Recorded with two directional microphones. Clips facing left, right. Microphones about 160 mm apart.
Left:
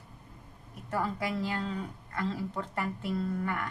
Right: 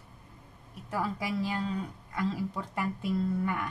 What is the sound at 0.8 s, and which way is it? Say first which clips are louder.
A woman's voice: left 1 dB; 10° right (ahead or behind).